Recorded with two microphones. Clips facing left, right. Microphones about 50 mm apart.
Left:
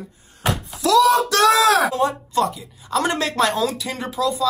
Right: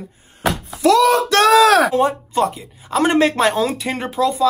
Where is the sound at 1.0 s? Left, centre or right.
Right.